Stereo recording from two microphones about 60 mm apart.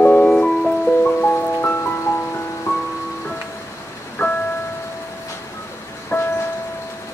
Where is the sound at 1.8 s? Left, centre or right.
Left.